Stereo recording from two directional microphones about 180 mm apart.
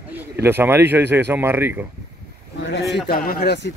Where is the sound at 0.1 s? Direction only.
10° right (ahead or behind).